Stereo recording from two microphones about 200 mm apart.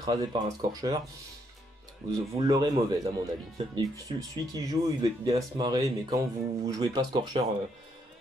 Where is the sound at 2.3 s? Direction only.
20° right (ahead or behind).